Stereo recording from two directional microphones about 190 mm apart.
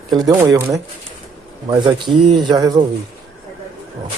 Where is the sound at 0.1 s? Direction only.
20° right (ahead or behind).